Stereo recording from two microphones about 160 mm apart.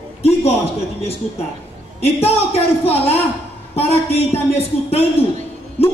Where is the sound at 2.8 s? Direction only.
40° left (ahead or behind).